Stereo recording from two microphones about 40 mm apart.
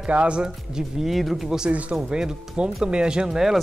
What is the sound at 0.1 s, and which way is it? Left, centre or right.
Speech, right.